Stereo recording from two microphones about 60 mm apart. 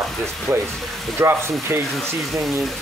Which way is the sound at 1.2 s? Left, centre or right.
Right.